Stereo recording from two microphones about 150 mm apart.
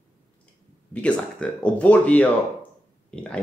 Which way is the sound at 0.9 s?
5° left (ahead or behind).